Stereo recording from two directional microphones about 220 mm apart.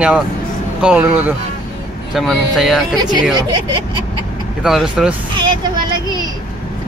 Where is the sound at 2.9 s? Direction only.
20° right (ahead or behind).